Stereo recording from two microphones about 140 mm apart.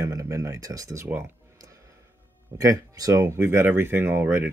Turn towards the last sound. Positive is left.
turn(degrees=-15)  # may be behind; listen again after turning